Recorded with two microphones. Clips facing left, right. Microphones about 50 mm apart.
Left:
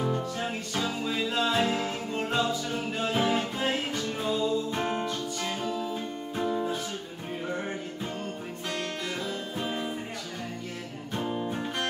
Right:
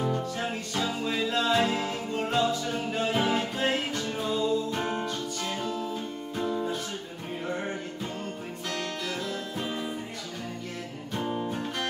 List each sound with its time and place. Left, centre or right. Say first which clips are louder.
0.0 s music: even; centre
6.3 s music: left 1 dB; centre
9.6 s music: left 2 dB; centre
11.1 s music: even; centre
11.5 s music: left 1 dB; centre